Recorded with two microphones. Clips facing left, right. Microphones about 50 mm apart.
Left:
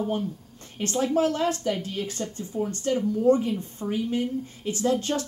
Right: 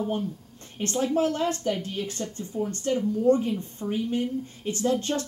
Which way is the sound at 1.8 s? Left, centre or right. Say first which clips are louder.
Left 1 dB; right.